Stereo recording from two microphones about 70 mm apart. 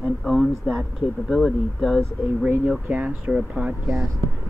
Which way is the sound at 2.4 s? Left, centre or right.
Right.